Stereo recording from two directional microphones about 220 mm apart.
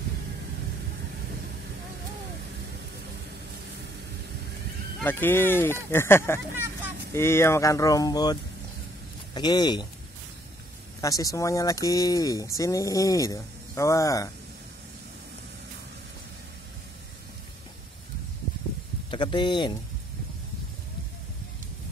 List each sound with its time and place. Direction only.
5.0 s speech: 10° left (ahead or behind)
11.0 s speech: 15° left (ahead or behind)
19.0 s speech: 20° left (ahead or behind)